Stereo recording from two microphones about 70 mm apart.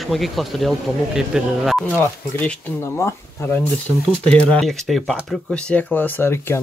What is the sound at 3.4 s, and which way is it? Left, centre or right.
Speech, left.